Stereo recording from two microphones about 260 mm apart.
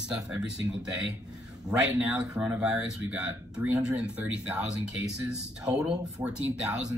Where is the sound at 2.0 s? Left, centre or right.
Centre.